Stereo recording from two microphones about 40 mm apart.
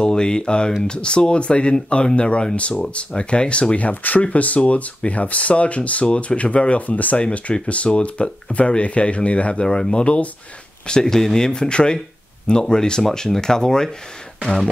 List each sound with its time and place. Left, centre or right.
0.0 s speech: centre
10.9 s speech: centre